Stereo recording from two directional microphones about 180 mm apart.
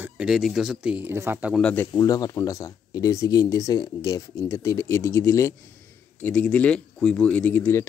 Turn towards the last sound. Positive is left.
turn(degrees=15)  # may be behind; listen again after turning